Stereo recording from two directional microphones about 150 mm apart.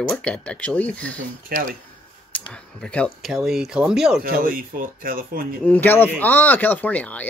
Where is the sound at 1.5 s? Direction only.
90° right.